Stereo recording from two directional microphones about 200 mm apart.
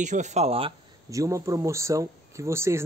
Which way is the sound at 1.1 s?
15° right (ahead or behind).